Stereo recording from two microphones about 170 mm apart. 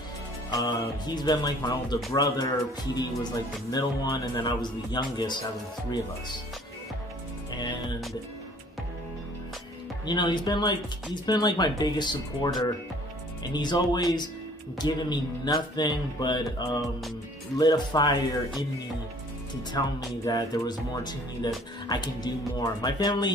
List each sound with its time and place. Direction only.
0.5 s speech: 25° left (ahead or behind)
10.0 s speech: 25° left (ahead or behind)
13.4 s speech: 25° left (ahead or behind)
19.8 s speech: 25° left (ahead or behind)